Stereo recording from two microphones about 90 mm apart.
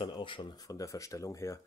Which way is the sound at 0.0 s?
65° left (ahead or behind).